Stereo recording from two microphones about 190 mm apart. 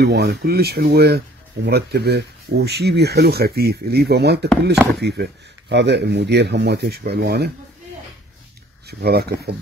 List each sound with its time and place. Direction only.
0.0 s speech: 55° right (ahead or behind)
8.8 s speech: 55° right (ahead or behind)